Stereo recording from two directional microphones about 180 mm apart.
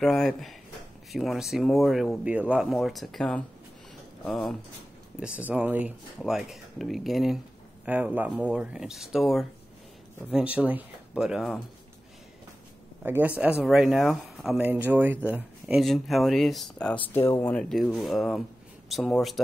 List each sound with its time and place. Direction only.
0.0 s speech: centre (ahead or behind)
13.0 s speech: 10° right (ahead or behind)